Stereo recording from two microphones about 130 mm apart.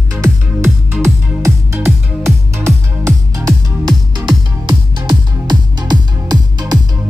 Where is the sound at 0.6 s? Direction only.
20° right (ahead or behind).